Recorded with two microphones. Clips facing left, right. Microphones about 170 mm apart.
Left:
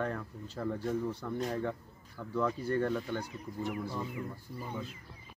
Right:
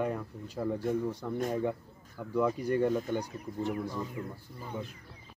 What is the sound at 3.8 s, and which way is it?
Speech, 10° left (ahead or behind).